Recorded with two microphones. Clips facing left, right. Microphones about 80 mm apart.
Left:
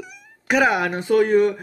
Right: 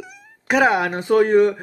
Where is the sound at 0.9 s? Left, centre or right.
Right.